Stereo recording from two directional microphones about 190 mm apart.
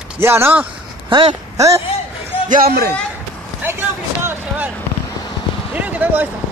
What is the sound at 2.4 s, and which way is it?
Speech, 50° right (ahead or behind).